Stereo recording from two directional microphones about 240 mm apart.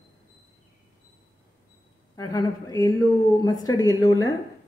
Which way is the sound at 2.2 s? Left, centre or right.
Centre.